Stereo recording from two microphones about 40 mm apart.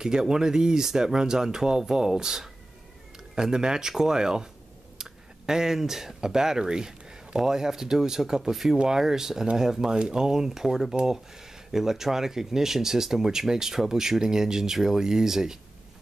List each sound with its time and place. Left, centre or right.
0.0 s speech: centre
5.5 s speech: centre